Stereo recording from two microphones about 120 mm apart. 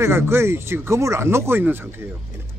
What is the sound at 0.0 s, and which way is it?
Speech, 20° right (ahead or behind).